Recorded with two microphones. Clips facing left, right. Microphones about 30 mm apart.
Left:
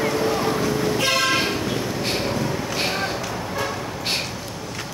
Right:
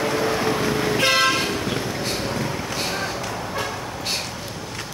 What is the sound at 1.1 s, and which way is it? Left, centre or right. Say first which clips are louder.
Vehicle: right 3 dB; centre.